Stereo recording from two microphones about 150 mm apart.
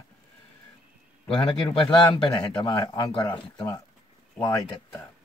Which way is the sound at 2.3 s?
25° left (ahead or behind).